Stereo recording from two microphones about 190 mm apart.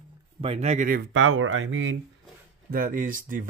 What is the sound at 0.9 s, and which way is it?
Speech, 70° right (ahead or behind).